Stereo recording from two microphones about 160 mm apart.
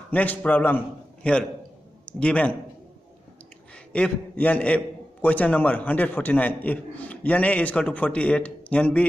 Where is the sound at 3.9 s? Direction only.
10° left (ahead or behind).